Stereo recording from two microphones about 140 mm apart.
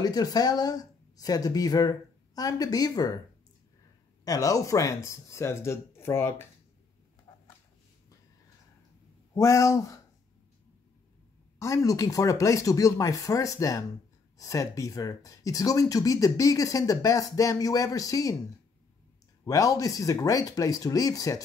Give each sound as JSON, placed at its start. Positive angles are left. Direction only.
{"t": 0.0, "sound": "speech", "side_deg": 25}
{"t": 4.2, "sound": "speech", "side_deg": 25}
{"t": 9.3, "sound": "speech", "side_deg": 20}
{"t": 11.6, "sound": "speech", "side_deg": 25}
{"t": 19.4, "sound": "speech", "side_deg": 25}